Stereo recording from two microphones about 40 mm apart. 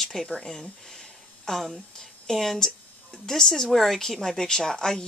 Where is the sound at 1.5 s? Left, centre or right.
Centre.